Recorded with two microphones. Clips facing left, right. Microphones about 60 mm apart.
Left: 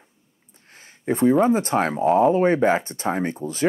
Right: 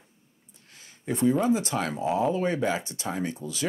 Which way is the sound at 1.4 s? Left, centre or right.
Left.